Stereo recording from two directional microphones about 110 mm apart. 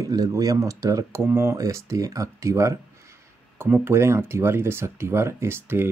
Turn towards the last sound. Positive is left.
turn(degrees=-20)  # may be behind; listen again after turning